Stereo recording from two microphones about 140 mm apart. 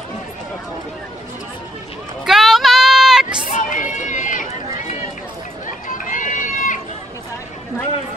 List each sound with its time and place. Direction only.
2.2 s sheep: centre (ahead or behind)
3.5 s run: 65° left (ahead or behind)
5.9 s run: 65° left (ahead or behind)